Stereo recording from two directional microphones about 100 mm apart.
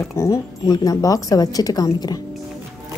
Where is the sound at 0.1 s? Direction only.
30° left (ahead or behind).